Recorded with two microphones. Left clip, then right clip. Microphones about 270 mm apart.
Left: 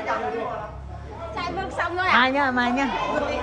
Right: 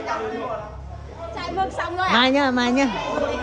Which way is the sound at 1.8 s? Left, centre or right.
Right.